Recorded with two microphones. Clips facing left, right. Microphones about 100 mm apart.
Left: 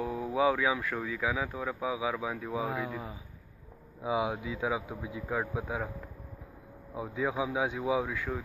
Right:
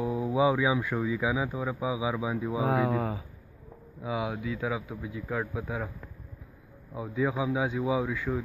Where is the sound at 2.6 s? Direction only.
75° right (ahead or behind).